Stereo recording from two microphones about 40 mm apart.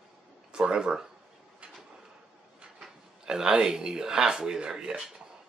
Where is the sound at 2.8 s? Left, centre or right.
Centre.